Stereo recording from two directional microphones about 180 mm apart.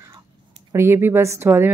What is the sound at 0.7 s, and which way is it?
A woman's voice, 15° right (ahead or behind).